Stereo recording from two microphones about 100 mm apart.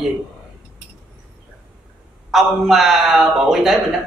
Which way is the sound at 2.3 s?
Centre (ahead or behind).